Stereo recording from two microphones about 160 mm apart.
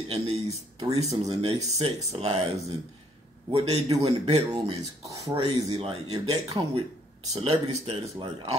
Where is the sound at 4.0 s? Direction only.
40° right (ahead or behind).